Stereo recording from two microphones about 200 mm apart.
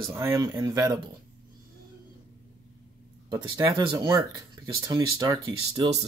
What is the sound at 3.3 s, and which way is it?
Speech, 20° right (ahead or behind).